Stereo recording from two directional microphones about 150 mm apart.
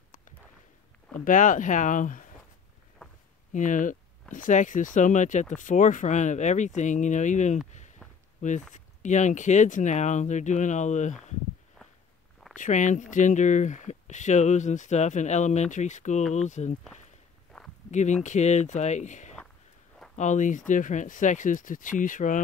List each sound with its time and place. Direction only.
1.2 s speech: 60° left (ahead or behind)
3.5 s speech: 60° left (ahead or behind)
12.5 s speech: 55° left (ahead or behind)
18.2 s speech: 50° left (ahead or behind)